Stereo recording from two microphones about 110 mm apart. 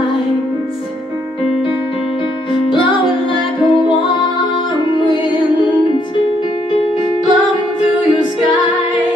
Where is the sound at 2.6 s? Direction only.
50° left (ahead or behind).